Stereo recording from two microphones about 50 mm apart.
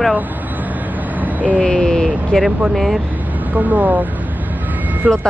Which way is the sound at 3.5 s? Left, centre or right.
Right.